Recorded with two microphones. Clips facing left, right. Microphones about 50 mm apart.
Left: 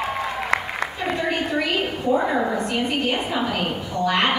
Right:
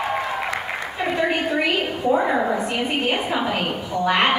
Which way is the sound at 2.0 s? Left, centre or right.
Centre.